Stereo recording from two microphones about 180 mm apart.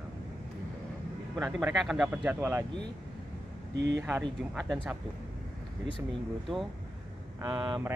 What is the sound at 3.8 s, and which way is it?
Speech, 75° right (ahead or behind).